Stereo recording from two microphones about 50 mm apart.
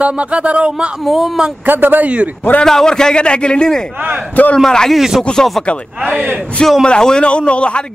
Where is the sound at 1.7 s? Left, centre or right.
Right.